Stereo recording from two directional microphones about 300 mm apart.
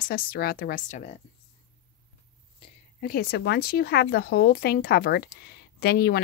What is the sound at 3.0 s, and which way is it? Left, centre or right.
Speech, left.